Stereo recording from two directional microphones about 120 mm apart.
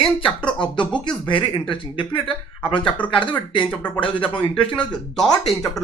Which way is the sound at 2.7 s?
10° left (ahead or behind).